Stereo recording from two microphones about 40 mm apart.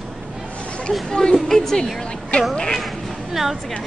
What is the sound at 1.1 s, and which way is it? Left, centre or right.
Speech, centre.